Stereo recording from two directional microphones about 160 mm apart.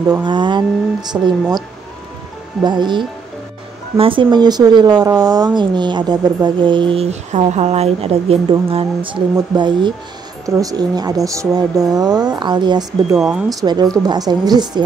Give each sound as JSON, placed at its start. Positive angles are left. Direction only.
{"t": 0.2, "sound": "speech", "side_deg": -30}
{"t": 2.6, "sound": "speech", "side_deg": -30}
{"t": 13.1, "sound": "speech", "side_deg": -5}
{"t": 13.5, "sound": "speech", "side_deg": -25}